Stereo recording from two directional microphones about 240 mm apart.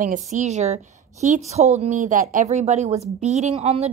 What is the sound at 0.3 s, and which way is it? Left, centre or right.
A woman's voice, right.